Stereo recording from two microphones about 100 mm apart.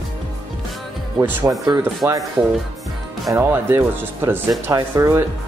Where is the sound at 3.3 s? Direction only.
25° right (ahead or behind).